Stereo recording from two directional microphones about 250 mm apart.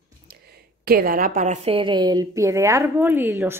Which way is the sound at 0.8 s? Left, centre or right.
Right.